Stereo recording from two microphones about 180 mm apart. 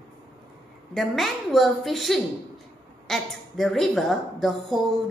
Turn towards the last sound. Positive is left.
turn(degrees=0)  # may be behind; listen again after turning